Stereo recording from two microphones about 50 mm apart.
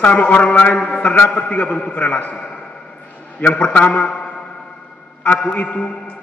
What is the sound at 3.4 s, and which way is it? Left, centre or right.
A man's voice, left.